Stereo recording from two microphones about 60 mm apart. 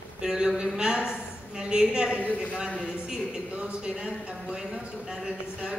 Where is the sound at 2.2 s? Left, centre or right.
Left.